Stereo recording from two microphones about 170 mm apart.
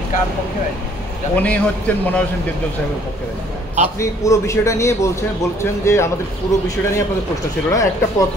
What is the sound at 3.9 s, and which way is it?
Speech, 20° left (ahead or behind).